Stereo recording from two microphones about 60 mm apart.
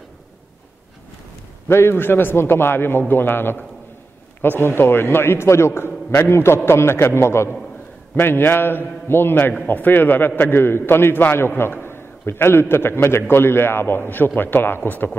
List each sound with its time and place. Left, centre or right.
1.7 s a man's voice: left
8.2 s a man's voice: left